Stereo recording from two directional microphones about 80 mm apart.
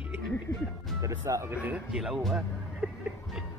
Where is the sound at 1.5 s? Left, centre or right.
Centre.